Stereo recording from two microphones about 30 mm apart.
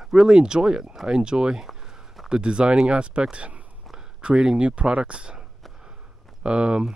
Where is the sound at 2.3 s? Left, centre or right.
Right.